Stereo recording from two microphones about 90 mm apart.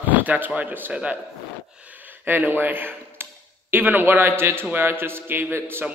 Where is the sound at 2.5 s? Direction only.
20° right (ahead or behind).